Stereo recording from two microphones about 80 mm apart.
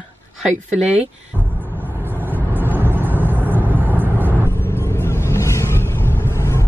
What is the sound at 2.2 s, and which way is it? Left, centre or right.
Vehicle, right.